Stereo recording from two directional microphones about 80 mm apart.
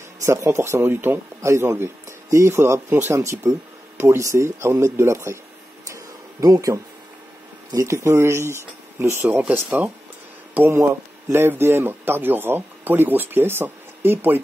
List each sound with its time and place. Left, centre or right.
0.2 s speech: right
5.9 s a sound: right
7.7 s speech: right
9.2 s speech: right